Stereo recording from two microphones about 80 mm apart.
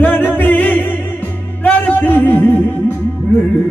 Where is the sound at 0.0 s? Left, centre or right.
Left.